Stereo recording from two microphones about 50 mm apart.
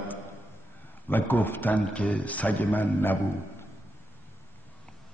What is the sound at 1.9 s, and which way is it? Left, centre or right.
A man's voice, left.